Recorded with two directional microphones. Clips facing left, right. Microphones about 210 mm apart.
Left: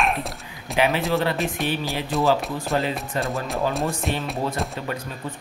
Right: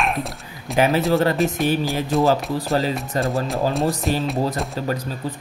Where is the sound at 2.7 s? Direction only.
35° right (ahead or behind).